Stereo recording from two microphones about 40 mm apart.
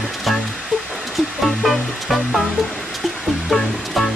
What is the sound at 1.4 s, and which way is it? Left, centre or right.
Music, centre.